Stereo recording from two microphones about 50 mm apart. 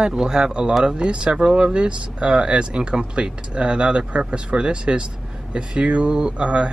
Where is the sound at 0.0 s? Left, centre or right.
Centre.